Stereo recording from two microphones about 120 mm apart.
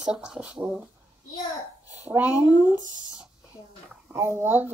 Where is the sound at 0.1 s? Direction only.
10° right (ahead or behind).